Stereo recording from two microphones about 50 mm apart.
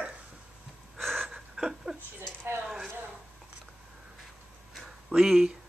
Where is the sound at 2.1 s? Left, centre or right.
Right.